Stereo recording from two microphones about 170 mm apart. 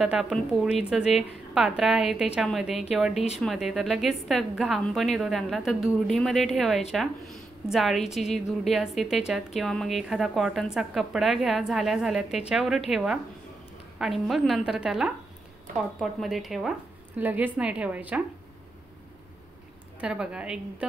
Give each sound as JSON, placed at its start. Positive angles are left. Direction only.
{"t": 0.0, "sound": "a woman's voice", "side_deg": -5}
{"t": 20.0, "sound": "a woman's voice", "side_deg": -5}